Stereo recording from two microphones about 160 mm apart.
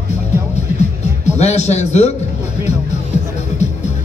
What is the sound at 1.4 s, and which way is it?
Speech, 45° left (ahead or behind).